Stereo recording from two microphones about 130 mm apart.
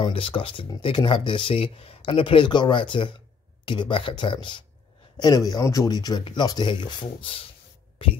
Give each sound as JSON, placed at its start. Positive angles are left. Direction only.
{"t": 0.0, "sound": "speech", "side_deg": 45}